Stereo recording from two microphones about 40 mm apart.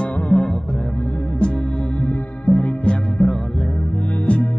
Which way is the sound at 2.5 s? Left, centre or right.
Left.